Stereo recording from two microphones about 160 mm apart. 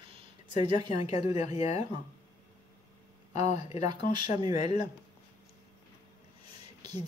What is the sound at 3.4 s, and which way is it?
Speech, 45° left (ahead or behind).